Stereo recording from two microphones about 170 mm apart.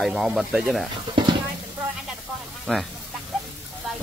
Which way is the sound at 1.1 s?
25° right (ahead or behind).